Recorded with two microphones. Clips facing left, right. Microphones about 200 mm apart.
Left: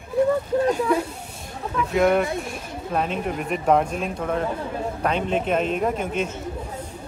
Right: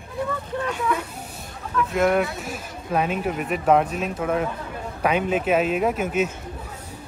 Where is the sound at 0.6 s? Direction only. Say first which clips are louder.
Left 3 dB; 40° left (ahead or behind).